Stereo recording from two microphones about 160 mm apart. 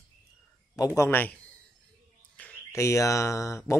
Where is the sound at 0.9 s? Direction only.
15° left (ahead or behind).